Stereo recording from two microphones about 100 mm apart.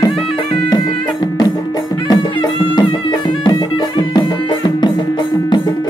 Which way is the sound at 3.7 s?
55° left (ahead or behind).